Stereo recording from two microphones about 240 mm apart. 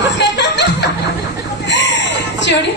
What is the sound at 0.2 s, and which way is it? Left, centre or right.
Music, left.